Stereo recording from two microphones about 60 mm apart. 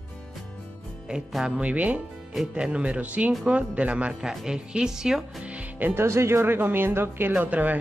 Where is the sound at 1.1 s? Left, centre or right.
Centre.